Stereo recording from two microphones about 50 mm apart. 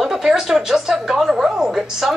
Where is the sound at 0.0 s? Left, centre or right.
Centre.